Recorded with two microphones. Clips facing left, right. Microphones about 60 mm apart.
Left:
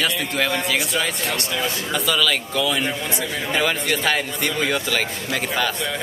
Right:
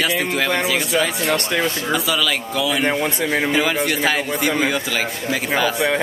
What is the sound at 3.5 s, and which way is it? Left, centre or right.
Speech, centre.